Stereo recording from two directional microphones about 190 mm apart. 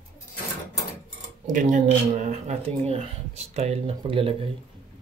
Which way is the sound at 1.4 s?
40° right (ahead or behind).